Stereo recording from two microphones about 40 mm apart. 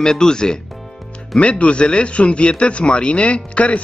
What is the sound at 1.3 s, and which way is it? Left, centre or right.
Speech, left.